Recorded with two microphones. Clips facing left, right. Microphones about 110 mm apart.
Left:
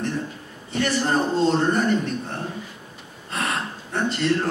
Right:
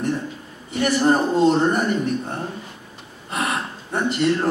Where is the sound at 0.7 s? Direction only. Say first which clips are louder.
Right 4 dB; 15° right (ahead or behind).